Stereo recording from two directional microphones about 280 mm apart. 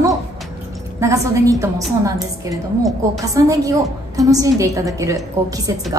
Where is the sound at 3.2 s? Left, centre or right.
Centre.